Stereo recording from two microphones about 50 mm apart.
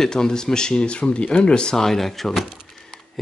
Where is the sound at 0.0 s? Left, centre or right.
Centre.